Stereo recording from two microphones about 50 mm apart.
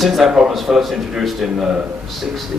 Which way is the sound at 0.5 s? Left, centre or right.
Centre.